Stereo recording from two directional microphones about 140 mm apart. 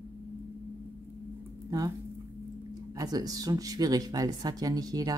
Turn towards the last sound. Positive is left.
turn(degrees=-25)  # may be behind; listen again after turning